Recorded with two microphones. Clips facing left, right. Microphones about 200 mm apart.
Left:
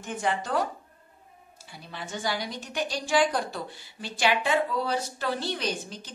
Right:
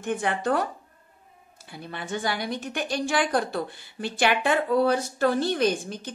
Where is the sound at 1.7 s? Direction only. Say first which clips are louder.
Right 5 dB; 55° right (ahead or behind).